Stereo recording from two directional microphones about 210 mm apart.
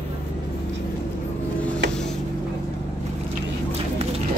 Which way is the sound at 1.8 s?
55° right (ahead or behind).